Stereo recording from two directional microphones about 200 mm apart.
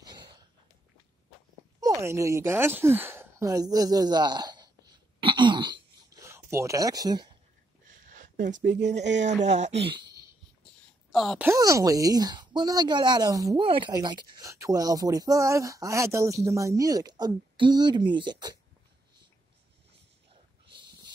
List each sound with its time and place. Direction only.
1.8 s speech: 15° right (ahead or behind)
5.2 s throat clearing: 25° right (ahead or behind)
7.9 s a sound: 40° right (ahead or behind)
9.2 s speech: 35° right (ahead or behind)
11.1 s speech: centre (ahead or behind)
11.4 s a woman's voice: 15° right (ahead or behind)
20.7 s dog: 20° right (ahead or behind)